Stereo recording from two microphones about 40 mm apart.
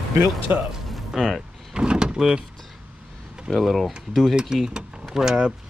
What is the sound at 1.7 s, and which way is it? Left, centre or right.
Door, right.